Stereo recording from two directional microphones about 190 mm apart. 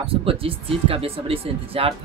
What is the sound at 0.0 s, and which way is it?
Speech, 30° right (ahead or behind).